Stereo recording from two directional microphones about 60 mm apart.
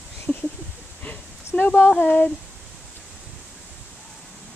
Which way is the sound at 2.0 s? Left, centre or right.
Left.